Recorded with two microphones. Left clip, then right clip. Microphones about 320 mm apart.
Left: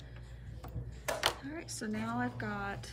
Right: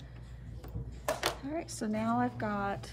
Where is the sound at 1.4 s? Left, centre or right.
Centre.